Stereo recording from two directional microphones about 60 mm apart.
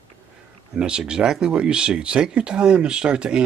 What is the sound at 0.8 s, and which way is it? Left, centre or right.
Speech, centre.